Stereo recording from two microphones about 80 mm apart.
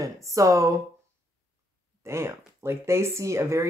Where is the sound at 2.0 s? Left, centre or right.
Right.